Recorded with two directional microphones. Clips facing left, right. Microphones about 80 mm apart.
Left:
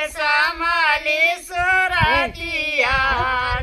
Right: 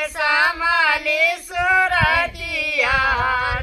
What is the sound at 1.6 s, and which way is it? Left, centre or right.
Music, centre.